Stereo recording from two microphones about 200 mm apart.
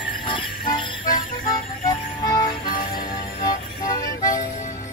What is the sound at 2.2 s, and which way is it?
Music, 20° left (ahead or behind).